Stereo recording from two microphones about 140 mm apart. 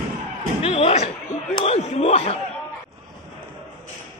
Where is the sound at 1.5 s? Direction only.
45° left (ahead or behind).